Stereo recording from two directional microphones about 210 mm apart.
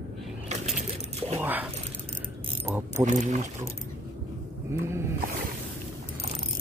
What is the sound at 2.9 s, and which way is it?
Speech, 35° right (ahead or behind).